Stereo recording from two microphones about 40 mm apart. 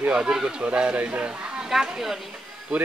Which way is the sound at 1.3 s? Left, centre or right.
Right.